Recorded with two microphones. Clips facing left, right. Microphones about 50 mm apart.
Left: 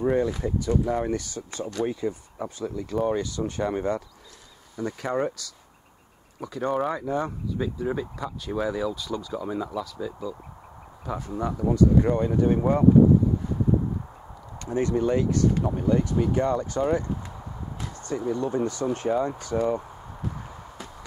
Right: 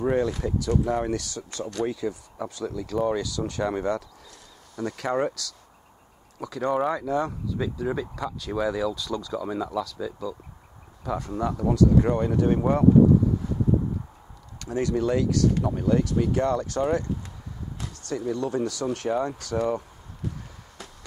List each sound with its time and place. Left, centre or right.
0.2 s speech: centre
1.1 s speech: centre
6.4 s speech: centre
14.6 s speech: centre
18.9 s speech: centre
19.6 s a sound: centre